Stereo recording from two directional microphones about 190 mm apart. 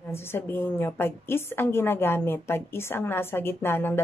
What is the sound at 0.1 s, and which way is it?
A woman's voice, 10° left (ahead or behind).